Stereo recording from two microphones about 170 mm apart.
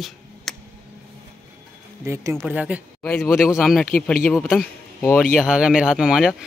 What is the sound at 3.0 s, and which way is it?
Speech, 15° left (ahead or behind).